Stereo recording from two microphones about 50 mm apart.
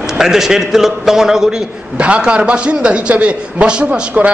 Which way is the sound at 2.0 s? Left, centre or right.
Right.